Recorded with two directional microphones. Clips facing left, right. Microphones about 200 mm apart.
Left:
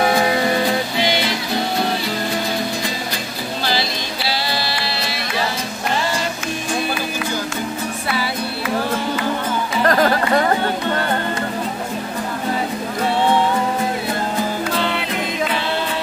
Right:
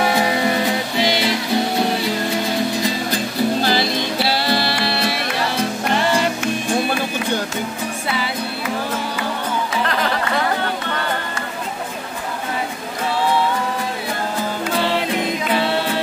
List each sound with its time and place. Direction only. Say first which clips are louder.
3.6 s music: right 4 dB; 55° right (ahead or behind)
9.8 s music: left 5 dB; 45° left (ahead or behind)